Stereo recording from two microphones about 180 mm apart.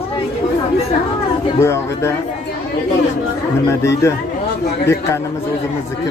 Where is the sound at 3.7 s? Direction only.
15° left (ahead or behind).